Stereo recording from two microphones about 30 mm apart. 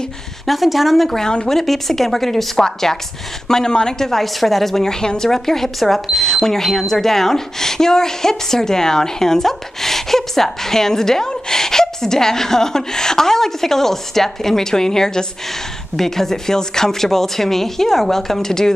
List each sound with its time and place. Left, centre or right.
0.5 s speech: centre
4.8 s speech: left
5.3 s speech: centre